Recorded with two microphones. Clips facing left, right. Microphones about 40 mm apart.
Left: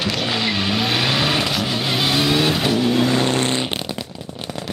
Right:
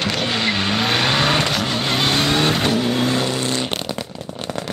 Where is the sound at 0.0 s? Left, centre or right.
Centre.